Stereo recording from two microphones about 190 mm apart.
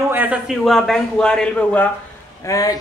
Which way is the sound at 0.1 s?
10° right (ahead or behind).